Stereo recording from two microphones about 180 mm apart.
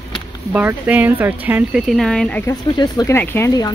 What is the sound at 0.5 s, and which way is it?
Speech, 10° right (ahead or behind).